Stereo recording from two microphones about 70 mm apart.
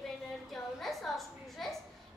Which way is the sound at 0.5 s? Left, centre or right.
Centre.